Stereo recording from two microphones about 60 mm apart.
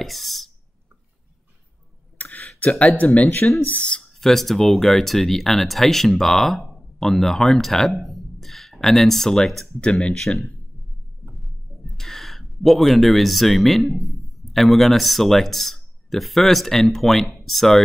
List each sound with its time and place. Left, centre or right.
0.0 s speech: centre
2.1 s a sound: left
3.6 s speech: left
4.2 s speech: centre